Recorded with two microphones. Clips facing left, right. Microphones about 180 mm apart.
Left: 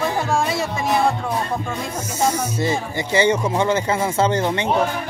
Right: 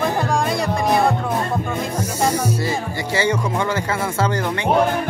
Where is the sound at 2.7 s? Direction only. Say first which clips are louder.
Left 1 dB; 20° left (ahead or behind).